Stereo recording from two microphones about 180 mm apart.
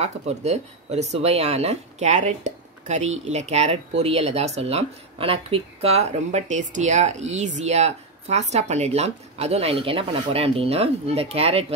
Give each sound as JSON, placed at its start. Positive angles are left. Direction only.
{"t": 0.0, "sound": "speech", "side_deg": -40}